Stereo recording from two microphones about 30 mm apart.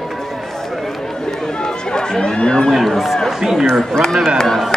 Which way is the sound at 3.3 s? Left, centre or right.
Centre.